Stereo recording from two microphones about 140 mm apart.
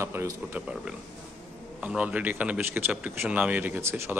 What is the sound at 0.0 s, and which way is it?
Speech, 20° right (ahead or behind).